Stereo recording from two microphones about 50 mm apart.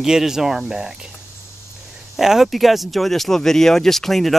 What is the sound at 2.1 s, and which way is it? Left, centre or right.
Speech, centre.